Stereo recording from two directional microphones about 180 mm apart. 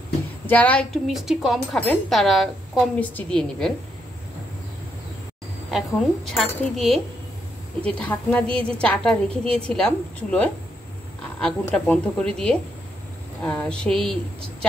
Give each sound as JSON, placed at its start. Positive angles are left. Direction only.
{"t": 0.5, "sound": "speech", "side_deg": 10}
{"t": 5.7, "sound": "a woman's voice", "side_deg": 0}